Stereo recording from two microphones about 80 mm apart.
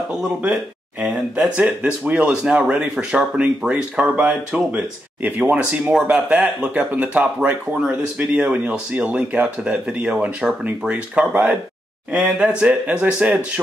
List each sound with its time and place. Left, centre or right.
1.6 s speech: centre